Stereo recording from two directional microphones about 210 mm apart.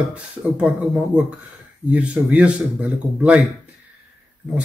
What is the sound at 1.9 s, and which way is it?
Speech, 5° right (ahead or behind).